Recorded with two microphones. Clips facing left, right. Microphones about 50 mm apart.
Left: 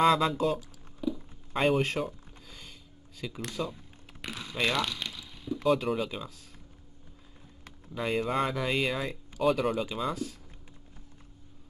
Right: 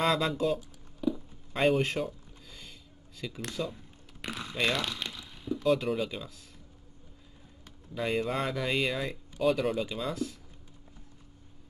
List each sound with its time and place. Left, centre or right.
0.0 s speech: centre
1.0 s a sound: centre
5.7 s speech: centre
7.9 s speech: centre